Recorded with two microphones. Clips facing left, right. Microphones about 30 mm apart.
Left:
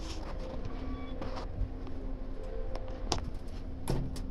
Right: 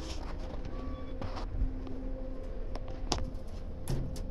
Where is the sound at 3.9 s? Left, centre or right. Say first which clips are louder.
Left 3 dB; left.